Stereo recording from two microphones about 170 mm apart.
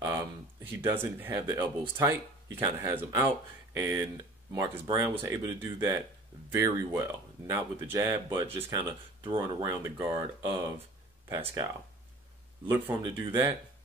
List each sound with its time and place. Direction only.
0.0 s speech: 15° right (ahead or behind)
11.2 s speech: 15° right (ahead or behind)